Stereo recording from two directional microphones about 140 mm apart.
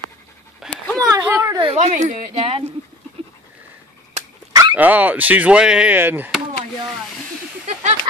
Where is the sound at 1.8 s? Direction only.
60° right (ahead or behind).